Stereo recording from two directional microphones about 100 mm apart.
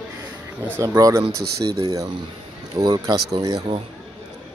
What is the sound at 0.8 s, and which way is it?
Speech, 35° right (ahead or behind).